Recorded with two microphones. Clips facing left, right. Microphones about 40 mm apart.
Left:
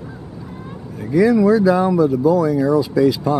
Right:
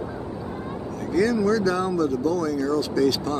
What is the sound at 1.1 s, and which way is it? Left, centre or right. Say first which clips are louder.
Speech: left 8 dB; centre.